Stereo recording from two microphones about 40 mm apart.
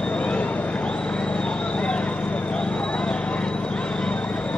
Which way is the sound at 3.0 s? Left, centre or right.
Left.